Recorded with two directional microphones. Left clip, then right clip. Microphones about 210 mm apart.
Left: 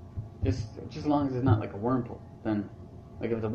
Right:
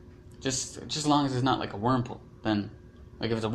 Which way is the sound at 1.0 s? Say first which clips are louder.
Right 2 dB; 45° right (ahead or behind).